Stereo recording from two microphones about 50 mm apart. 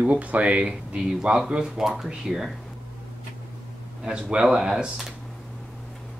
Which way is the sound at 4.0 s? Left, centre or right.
Centre.